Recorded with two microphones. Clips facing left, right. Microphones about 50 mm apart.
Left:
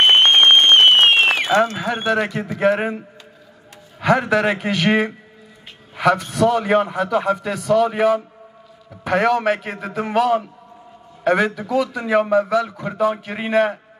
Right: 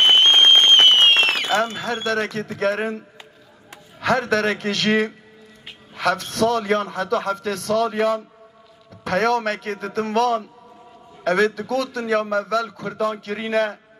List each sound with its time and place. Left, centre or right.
0.0 s applause: left
1.3 s a sound: centre
1.8 s speech: centre
4.0 s speech: centre